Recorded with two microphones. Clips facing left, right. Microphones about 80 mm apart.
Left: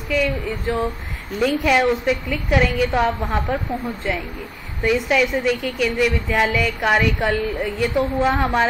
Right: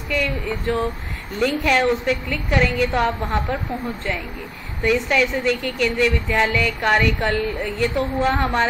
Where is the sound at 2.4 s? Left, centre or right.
Centre.